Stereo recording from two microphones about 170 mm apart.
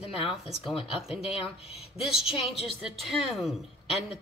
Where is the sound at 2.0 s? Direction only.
5° right (ahead or behind).